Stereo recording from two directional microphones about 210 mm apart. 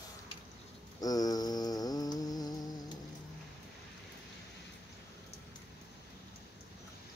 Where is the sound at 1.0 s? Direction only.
20° left (ahead or behind).